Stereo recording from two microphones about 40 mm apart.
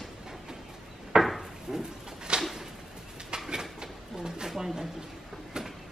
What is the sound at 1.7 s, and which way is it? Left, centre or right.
Bird, centre.